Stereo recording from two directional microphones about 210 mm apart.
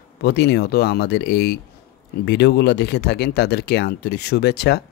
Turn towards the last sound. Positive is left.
turn(degrees=50)  # may be behind; listen again after turning